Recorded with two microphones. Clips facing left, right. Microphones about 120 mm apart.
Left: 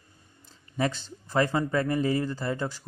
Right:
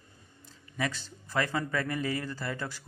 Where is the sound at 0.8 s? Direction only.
25° left (ahead or behind).